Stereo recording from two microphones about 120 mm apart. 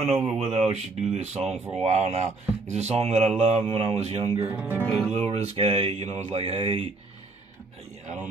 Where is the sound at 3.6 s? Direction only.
50° right (ahead or behind).